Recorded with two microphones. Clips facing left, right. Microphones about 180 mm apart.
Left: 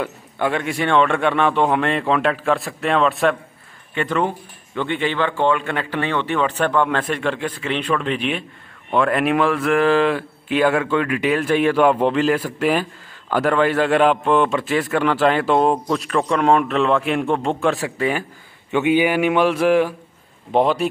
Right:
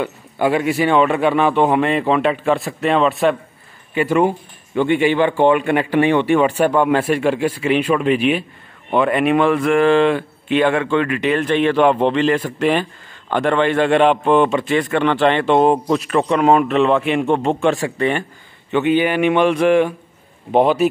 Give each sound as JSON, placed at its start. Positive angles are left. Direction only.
{"t": 0.0, "sound": "a man's voice", "side_deg": -5}